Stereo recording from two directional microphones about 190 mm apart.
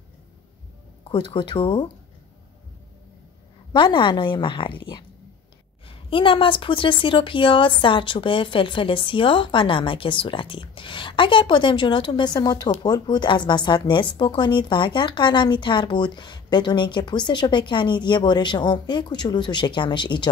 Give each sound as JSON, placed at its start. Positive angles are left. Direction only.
{"t": 1.1, "sound": "a woman's voice", "side_deg": 25}
{"t": 3.7, "sound": "a woman's voice", "side_deg": 25}